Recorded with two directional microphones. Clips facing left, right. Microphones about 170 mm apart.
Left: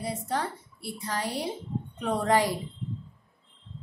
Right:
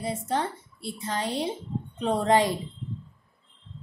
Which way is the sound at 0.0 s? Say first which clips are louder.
Right 2 dB; 25° right (ahead or behind).